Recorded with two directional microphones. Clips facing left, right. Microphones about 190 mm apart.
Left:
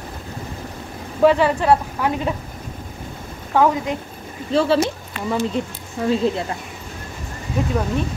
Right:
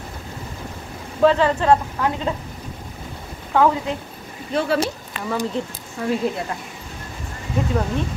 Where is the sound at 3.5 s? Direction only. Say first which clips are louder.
Left 1 dB; 15° left (ahead or behind).